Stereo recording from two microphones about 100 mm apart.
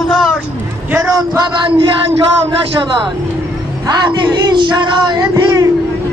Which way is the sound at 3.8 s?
50° right (ahead or behind).